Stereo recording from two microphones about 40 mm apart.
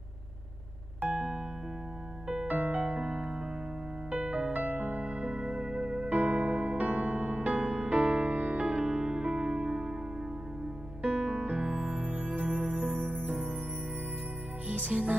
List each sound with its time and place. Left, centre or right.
1.0 s electric piano: right
2.4 s music: right; by 6.0 s centre
6.0 s music: right
11.5 s music: right
14.9 s music: right